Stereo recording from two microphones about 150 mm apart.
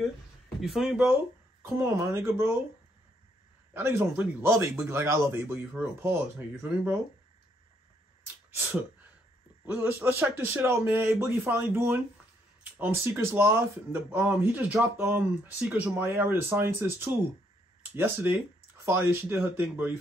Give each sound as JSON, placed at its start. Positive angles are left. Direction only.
{"t": 0.6, "sound": "speech", "side_deg": -5}
{"t": 1.6, "sound": "speech", "side_deg": -20}
{"t": 3.7, "sound": "speech", "side_deg": -15}
{"t": 9.7, "sound": "speech", "side_deg": -15}